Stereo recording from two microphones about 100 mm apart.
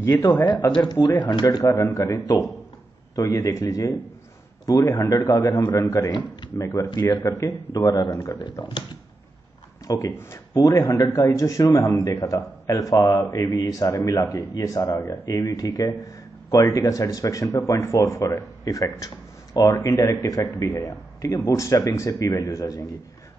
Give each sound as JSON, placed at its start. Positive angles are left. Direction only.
{"t": 1.0, "sound": "a man's voice", "side_deg": 50}
{"t": 5.1, "sound": "a man's voice", "side_deg": 40}
{"t": 5.8, "sound": "a man's voice", "side_deg": 30}
{"t": 6.9, "sound": "a man's voice", "side_deg": 45}
{"t": 7.2, "sound": "a man's voice", "side_deg": 30}
{"t": 8.4, "sound": "a man's voice", "side_deg": 50}
{"t": 9.8, "sound": "a man's voice", "side_deg": 35}